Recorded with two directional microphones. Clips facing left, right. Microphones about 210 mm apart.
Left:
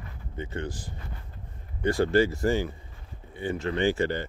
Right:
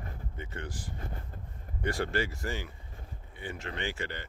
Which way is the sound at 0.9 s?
45° right (ahead or behind).